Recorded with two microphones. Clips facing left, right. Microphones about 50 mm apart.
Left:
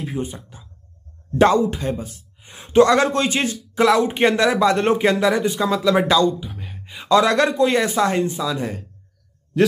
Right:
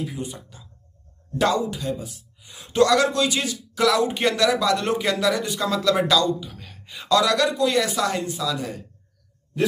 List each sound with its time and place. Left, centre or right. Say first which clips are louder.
0.0 s speech: left 4 dB; left